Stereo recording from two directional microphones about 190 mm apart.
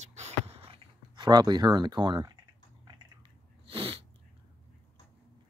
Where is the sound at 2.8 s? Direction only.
30° right (ahead or behind).